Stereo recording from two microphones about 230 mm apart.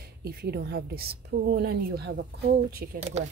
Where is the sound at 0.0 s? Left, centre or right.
Right.